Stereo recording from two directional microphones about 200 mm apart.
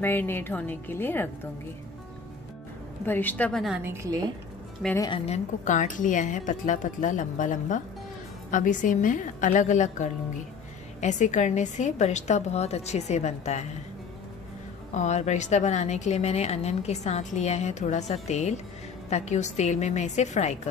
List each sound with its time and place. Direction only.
0.0 s a woman's voice: 10° left (ahead or behind)
3.1 s a woman's voice: 10° left (ahead or behind)
3.8 s a woman's voice: 15° right (ahead or behind)
4.8 s a woman's voice: 15° left (ahead or behind)
5.2 s a woman's voice: 35° left (ahead or behind)
15.0 s a woman's voice: 35° left (ahead or behind)